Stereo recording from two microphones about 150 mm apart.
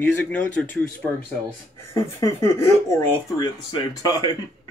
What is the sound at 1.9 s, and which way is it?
Speech, 20° left (ahead or behind).